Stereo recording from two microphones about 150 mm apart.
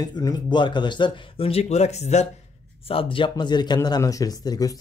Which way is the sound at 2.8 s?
35° left (ahead or behind).